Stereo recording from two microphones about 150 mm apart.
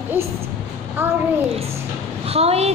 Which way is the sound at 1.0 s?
15° right (ahead or behind).